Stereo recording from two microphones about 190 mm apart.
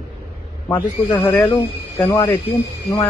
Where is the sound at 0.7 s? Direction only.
15° left (ahead or behind).